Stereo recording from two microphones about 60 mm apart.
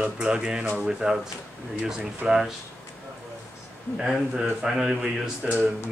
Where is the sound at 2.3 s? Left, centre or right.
Centre.